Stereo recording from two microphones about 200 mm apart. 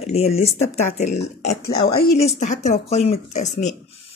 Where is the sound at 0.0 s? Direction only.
30° left (ahead or behind); by 2.1 s 45° left (ahead or behind).